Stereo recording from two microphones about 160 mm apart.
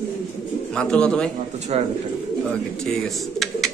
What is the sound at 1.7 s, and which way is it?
Speech, 40° right (ahead or behind).